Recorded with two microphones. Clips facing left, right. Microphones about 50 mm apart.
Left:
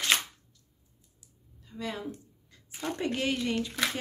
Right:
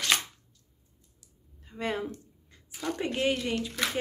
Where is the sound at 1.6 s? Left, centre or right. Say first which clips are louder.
Right 4 dB; right.